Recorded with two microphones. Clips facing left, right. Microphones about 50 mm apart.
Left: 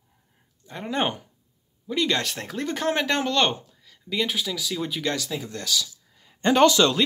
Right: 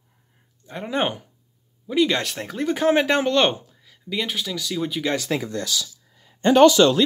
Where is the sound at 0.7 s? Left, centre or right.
Centre.